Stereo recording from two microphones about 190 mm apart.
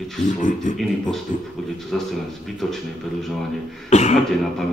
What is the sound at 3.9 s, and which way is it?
Speech, 35° left (ahead or behind).